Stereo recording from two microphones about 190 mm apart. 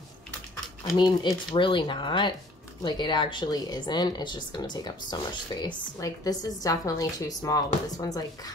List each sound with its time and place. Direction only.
0.9 s speech: 25° left (ahead or behind)